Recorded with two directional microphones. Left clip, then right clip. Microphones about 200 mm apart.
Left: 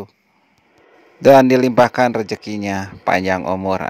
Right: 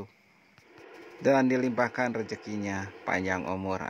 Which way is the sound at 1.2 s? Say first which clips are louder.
Left 15 dB; 50° left (ahead or behind).